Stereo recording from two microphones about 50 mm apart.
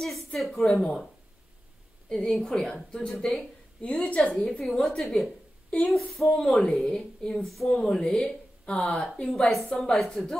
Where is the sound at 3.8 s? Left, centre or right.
Centre.